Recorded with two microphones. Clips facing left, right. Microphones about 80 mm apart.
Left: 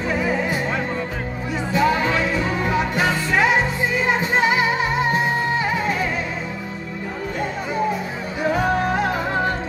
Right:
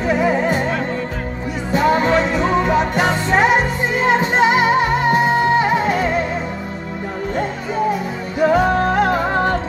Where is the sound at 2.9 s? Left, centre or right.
Right.